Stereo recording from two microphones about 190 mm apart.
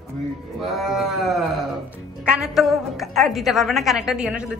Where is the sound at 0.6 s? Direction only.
Centre (ahead or behind).